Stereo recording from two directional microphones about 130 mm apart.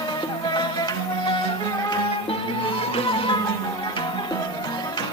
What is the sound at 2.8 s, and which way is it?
Music, 45° left (ahead or behind).